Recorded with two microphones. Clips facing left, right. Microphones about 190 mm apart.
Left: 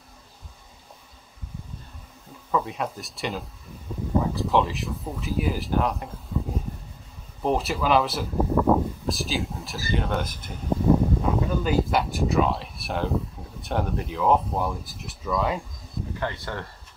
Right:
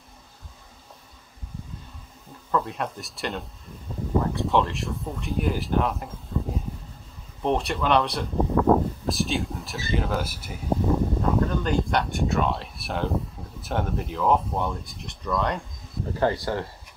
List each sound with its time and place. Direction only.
2.5 s speech: centre (ahead or behind)
11.2 s speech: 5° left (ahead or behind)
16.2 s speech: 35° right (ahead or behind)